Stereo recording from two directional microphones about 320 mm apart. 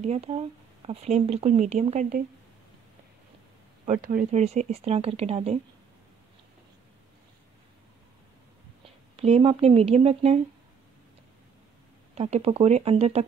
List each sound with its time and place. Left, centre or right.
0.0 s speech: centre
3.8 s speech: right
9.1 s speech: centre
12.2 s speech: centre